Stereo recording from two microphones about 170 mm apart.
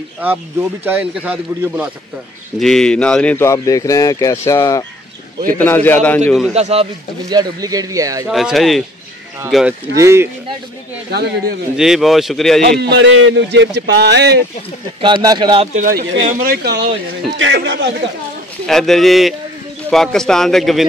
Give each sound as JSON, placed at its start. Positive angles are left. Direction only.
{"t": 0.2, "sound": "a man's voice", "side_deg": -10}
{"t": 2.6, "sound": "speech", "side_deg": 5}
{"t": 6.5, "sound": "speech", "side_deg": -40}
{"t": 7.2, "sound": "speech", "side_deg": -25}
{"t": 8.3, "sound": "a man's voice", "side_deg": 0}
{"t": 9.9, "sound": "a man's voice", "side_deg": -15}
{"t": 11.1, "sound": "speech", "side_deg": -65}
{"t": 11.7, "sound": "a man's voice", "side_deg": -5}
{"t": 12.6, "sound": "a man's voice", "side_deg": -70}
{"t": 15.0, "sound": "speech", "side_deg": -30}
{"t": 15.7, "sound": "speech", "side_deg": -55}
{"t": 16.6, "sound": "a man's voice", "side_deg": -85}
{"t": 18.7, "sound": "a man's voice", "side_deg": 0}